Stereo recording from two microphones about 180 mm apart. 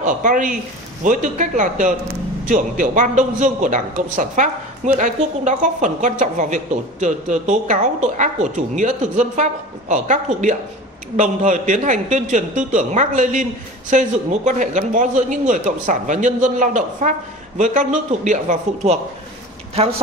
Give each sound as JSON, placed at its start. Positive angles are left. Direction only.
{"t": 0.0, "sound": "a man's voice", "side_deg": -45}